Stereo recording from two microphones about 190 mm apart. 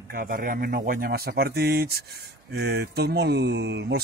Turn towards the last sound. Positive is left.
turn(degrees=-60)  # may be behind; listen again after turning